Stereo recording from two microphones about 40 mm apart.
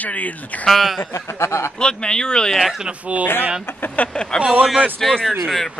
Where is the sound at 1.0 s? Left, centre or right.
Left.